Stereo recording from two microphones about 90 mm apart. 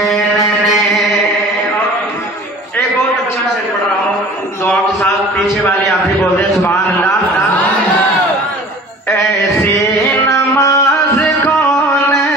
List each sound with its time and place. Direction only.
6.6 s a man's voice: 35° left (ahead or behind)
9.1 s music: 35° left (ahead or behind)
11.4 s a sound: 35° left (ahead or behind)